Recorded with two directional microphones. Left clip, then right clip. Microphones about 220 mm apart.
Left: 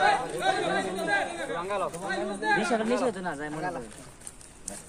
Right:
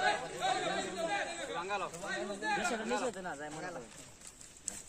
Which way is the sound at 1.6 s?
50° right (ahead or behind).